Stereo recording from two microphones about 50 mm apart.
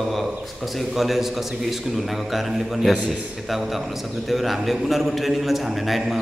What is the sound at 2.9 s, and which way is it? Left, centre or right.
Speech, right.